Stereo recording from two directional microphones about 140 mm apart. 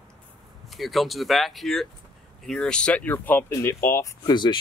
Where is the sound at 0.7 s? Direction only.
Centre (ahead or behind); by 4.6 s 30° left (ahead or behind).